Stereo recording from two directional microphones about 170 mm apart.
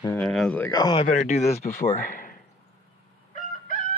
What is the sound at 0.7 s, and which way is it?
Speech, 25° left (ahead or behind).